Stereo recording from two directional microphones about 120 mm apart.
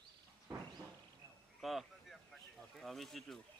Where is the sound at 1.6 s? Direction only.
Centre (ahead or behind).